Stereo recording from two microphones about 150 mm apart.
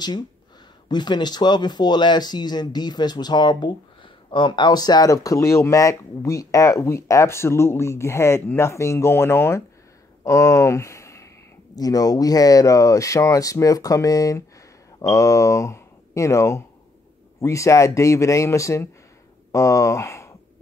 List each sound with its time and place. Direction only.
0.8 s speech: 30° left (ahead or behind)